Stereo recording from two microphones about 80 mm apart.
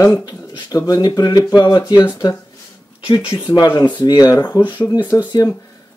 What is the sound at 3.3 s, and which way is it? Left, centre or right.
Speech, left.